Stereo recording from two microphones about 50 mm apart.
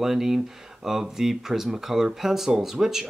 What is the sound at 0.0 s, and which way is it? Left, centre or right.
Speech, centre.